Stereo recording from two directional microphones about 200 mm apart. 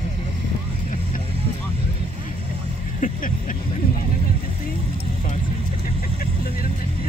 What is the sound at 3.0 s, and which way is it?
Vehicle, 40° left (ahead or behind).